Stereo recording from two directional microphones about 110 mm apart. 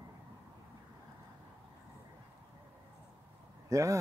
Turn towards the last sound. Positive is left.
turn(degrees=-30)  # may be behind; listen again after turning